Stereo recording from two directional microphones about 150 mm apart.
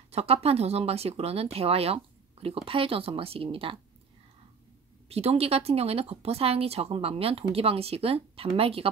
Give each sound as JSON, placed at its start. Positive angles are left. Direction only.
{"t": 0.1, "sound": "speech", "side_deg": -40}
{"t": 5.1, "sound": "speech", "side_deg": -45}